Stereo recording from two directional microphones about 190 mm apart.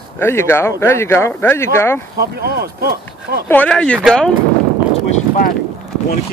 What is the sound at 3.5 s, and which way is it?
Speech, 5° left (ahead or behind).